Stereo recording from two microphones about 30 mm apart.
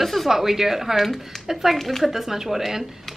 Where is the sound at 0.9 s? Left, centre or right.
Centre.